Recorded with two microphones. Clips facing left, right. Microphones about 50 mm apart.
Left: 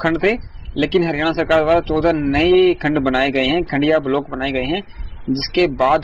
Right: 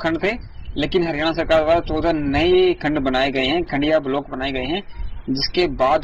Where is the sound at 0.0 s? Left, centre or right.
Left.